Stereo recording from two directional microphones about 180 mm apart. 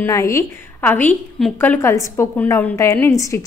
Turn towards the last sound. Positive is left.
turn(degrees=15)  # may be behind; listen again after turning